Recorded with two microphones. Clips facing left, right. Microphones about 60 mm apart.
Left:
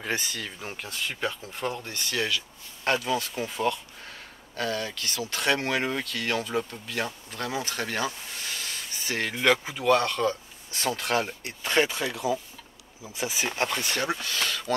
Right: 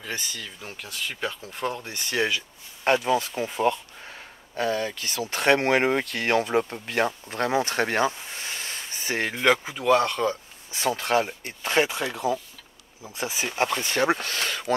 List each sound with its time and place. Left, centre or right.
0.1 s speech: centre
2.0 s speech: right
5.3 s speech: right
8.4 s a sound: right
9.3 s speech: centre
14.0 s speech: right